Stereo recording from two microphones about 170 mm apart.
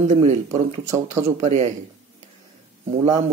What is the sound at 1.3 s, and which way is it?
Speech, 40° right (ahead or behind).